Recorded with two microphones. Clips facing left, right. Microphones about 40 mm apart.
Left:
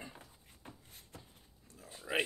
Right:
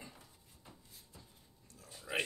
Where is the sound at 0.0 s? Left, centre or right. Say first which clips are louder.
Left 4 dB; left.